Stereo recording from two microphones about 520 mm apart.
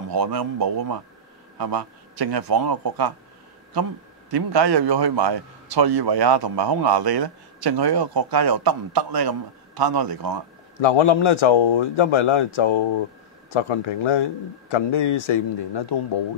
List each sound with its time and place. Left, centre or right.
0.1 s a man's voice: right
4.3 s a man's voice: right
10.8 s a man's voice: left